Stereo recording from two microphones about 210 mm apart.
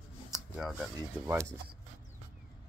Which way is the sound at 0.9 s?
15° right (ahead or behind).